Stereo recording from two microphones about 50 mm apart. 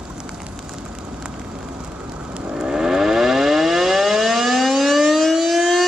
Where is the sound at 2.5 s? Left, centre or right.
Centre.